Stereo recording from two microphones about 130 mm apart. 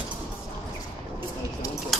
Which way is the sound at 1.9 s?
Centre (ahead or behind).